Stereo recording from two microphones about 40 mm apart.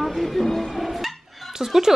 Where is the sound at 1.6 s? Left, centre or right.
Centre.